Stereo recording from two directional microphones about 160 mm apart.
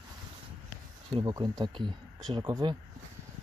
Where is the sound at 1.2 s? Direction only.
20° right (ahead or behind).